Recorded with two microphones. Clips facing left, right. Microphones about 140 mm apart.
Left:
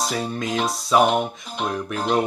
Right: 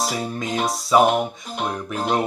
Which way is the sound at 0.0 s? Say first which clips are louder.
Even; centre (ahead or behind).